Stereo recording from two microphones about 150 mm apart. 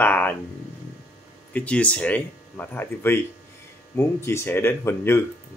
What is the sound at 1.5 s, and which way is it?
Speech, 10° left (ahead or behind).